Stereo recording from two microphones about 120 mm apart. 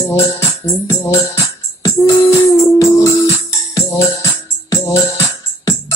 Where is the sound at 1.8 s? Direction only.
25° left (ahead or behind).